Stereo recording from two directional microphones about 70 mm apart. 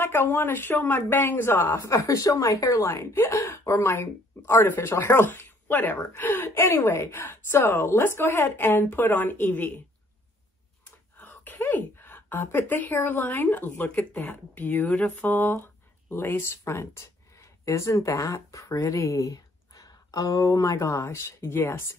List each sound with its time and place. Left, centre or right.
0.0 s speech: left
1.8 s a woman's voice: left
11.1 s a sound: left
12.6 s speech: left
14.9 s a sound: centre
15.4 s speech: left